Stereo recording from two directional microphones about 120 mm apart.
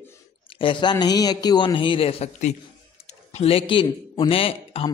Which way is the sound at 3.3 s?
55° left (ahead or behind).